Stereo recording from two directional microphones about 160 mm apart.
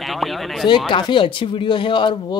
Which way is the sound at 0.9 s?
30° left (ahead or behind).